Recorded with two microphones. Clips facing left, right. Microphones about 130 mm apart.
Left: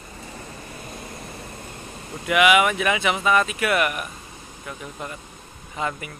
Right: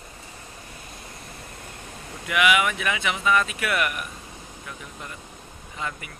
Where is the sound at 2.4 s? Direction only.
65° left (ahead or behind).